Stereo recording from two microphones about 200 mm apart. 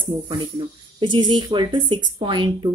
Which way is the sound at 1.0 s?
25° right (ahead or behind).